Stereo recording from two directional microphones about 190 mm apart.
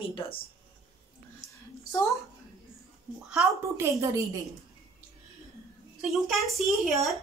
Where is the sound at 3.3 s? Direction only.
10° right (ahead or behind).